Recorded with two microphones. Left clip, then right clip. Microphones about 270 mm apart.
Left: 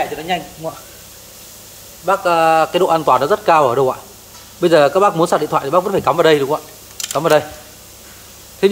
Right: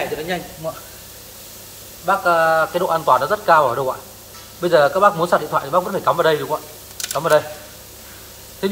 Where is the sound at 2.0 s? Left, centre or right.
Left.